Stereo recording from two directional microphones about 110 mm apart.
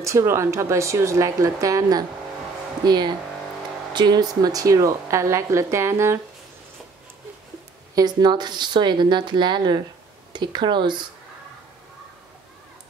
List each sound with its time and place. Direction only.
0.0 s a woman's voice: 25° right (ahead or behind)
7.9 s speech: 40° right (ahead or behind)